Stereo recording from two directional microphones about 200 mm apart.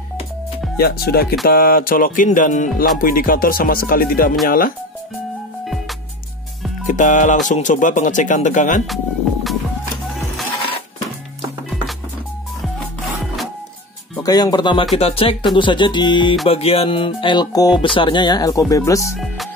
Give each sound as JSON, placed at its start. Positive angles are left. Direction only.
{"t": 0.7, "sound": "speech", "side_deg": 50}
{"t": 6.9, "sound": "speech", "side_deg": 40}
{"t": 8.8, "sound": "speech", "side_deg": 0}
{"t": 14.2, "sound": "music", "side_deg": 20}